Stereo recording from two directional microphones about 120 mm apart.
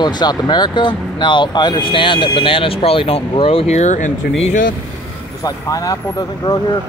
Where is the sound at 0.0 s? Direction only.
35° left (ahead or behind); by 4.1 s 85° left.